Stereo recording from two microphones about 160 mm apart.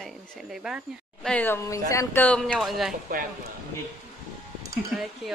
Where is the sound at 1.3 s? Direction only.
10° left (ahead or behind).